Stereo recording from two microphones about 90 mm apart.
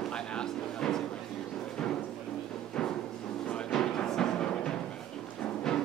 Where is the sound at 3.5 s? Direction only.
10° left (ahead or behind).